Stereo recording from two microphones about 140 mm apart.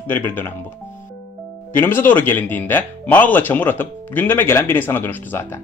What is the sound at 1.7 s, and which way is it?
Speech, 15° left (ahead or behind).